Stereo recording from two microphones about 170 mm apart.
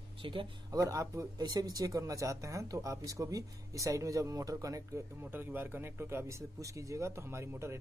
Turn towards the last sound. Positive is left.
turn(degrees=-15)  # may be behind; listen again after turning